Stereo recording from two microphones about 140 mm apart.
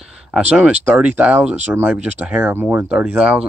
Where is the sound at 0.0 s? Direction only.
5° right (ahead or behind).